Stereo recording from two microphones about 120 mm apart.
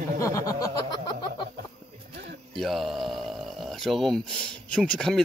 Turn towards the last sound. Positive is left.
turn(degrees=5)  # may be behind; listen again after turning